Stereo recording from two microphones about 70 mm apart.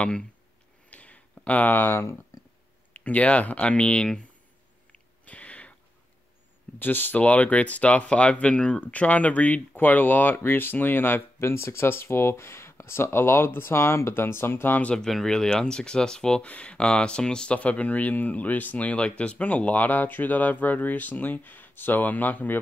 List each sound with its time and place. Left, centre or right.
0.0 s speech: centre
0.8 s a sound: centre
2.9 s speech: left
4.9 s a sound: centre
6.8 s speech: left
14.8 s speech: centre